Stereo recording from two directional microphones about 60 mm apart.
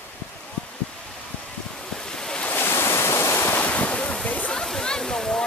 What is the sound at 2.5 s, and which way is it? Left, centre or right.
Waves, left.